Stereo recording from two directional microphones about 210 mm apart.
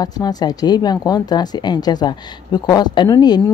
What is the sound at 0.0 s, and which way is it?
Speech, 20° left (ahead or behind).